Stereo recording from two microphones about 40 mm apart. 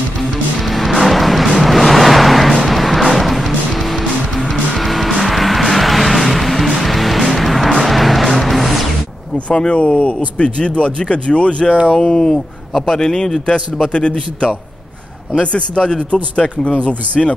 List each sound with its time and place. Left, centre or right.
0.7 s music: centre
1.6 s vehicle: centre
2.6 s music: centre
9.5 s speech: left
12.0 s speech: centre
13.0 s speech: centre
15.5 s speech: left